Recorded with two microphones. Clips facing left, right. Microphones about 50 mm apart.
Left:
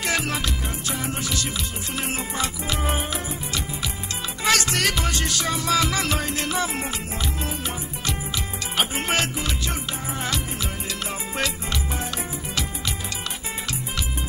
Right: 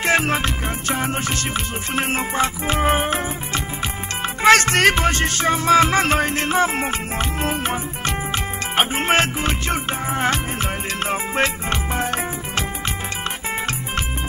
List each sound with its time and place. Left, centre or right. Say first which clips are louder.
0.0 s music: right 7 dB; right